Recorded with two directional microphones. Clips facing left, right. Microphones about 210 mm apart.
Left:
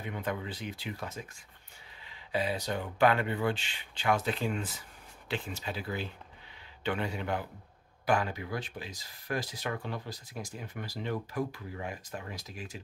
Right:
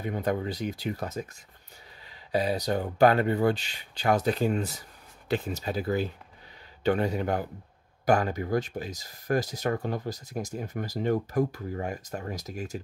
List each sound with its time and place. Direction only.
0.0 s speech: 40° right (ahead or behind)